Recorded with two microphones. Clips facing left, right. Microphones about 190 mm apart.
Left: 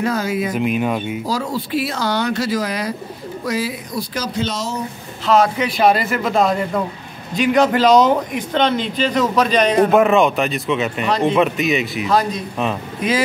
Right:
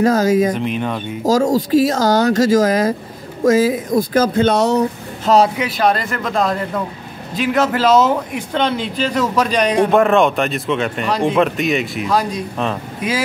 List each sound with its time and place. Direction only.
0.0 s speech: 40° right (ahead or behind)
0.6 s speech: 10° left (ahead or behind)
1.2 s speech: 45° right (ahead or behind); by 4.8 s 65° right (ahead or behind)
5.2 s speech: 35° right (ahead or behind)
5.6 s a man's voice: centre (ahead or behind)
9.8 s speech: 5° left (ahead or behind)
11.1 s a man's voice: 10° right (ahead or behind)
11.3 s speech: centre (ahead or behind)